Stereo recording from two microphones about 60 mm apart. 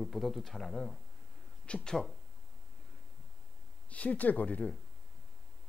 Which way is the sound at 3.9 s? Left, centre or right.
Left.